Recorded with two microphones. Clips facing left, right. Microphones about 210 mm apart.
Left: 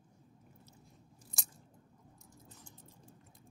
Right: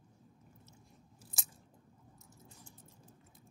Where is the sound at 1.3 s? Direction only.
Centre (ahead or behind).